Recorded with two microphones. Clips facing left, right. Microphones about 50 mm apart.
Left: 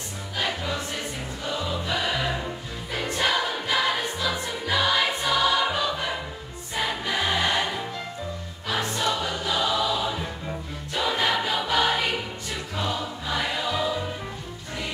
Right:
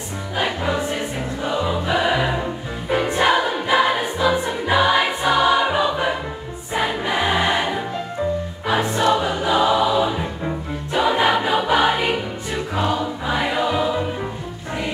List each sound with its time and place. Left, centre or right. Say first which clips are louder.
0.6 s music: right 8 dB; right
6.7 s choir: right 6 dB; right